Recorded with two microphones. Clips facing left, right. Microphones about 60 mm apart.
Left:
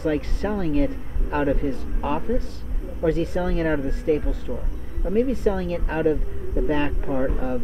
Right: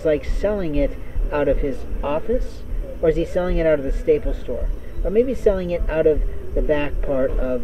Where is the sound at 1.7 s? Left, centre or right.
Centre.